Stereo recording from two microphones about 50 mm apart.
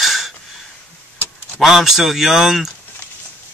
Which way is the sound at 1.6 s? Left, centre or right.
Centre.